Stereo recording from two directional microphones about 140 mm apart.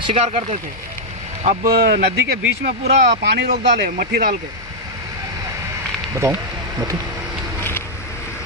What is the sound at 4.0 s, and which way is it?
Speech, 75° right (ahead or behind).